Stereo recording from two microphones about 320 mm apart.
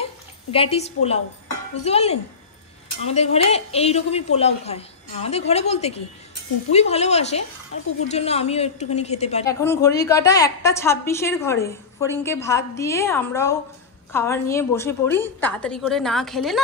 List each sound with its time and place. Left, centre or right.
0.0 s a woman's voice: centre
9.5 s a woman's voice: centre